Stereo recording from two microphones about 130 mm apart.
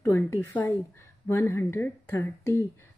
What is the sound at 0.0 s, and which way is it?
A woman's voice, 20° left (ahead or behind).